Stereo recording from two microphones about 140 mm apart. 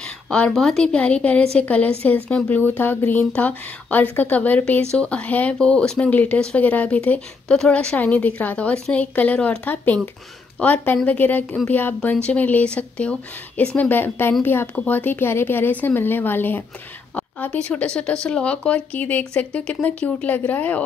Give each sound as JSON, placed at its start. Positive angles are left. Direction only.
{"t": 0.0, "sound": "speech", "side_deg": 5}